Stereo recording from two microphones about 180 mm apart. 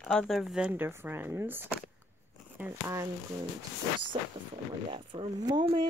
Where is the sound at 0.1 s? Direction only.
Centre (ahead or behind); by 3.1 s 15° right (ahead or behind).